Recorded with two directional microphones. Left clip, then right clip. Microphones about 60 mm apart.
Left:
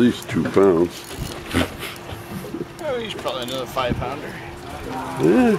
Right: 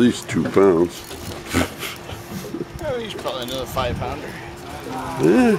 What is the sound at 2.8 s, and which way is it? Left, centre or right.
Speech, centre.